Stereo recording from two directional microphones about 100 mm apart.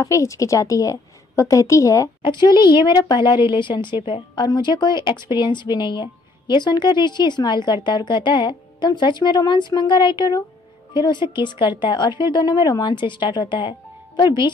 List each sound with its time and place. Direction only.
0.0 s a woman's voice: 30° left (ahead or behind)
2.2 s a woman's voice: 50° left (ahead or behind)
4.5 s speech: 45° left (ahead or behind)